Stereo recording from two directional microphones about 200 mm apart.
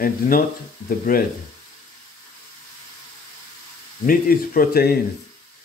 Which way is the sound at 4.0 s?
45° left (ahead or behind).